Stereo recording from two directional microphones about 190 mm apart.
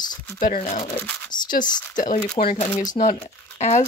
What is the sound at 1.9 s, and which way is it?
Speech, 45° left (ahead or behind).